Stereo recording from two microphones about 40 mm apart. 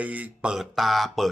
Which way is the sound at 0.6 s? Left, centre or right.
Centre.